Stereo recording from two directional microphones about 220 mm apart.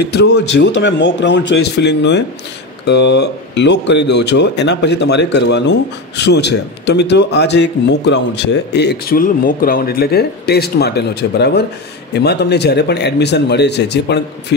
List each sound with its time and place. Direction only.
0.1 s speech: 50° left (ahead or behind)